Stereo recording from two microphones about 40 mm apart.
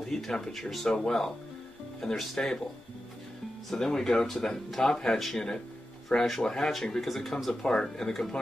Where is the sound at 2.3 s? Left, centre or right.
Centre.